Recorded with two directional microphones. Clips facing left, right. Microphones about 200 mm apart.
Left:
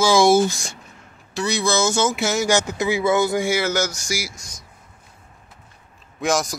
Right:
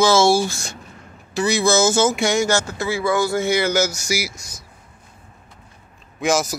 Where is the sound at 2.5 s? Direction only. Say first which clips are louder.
Left 2 dB; 15° left (ahead or behind); by 4.6 s 10° right (ahead or behind).